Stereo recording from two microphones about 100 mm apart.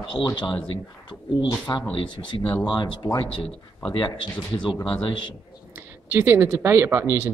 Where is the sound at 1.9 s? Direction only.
60° left (ahead or behind).